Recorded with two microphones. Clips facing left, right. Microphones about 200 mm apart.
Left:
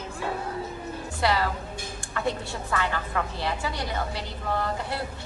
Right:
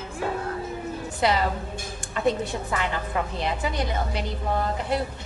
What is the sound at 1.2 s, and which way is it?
A woman's voice, 20° right (ahead or behind).